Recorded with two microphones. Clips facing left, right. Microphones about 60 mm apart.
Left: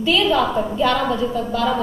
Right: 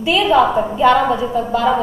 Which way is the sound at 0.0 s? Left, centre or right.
Centre.